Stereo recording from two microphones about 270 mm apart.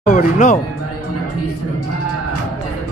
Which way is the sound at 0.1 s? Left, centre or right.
Left.